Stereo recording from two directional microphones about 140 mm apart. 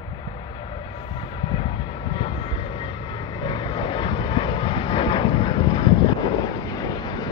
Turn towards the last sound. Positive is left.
turn(degrees=30)  # may be behind; listen again after turning